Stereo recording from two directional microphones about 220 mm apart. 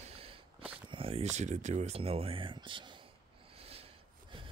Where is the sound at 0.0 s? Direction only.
25° right (ahead or behind).